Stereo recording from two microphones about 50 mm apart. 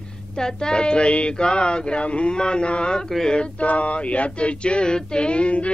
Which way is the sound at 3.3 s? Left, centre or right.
Left.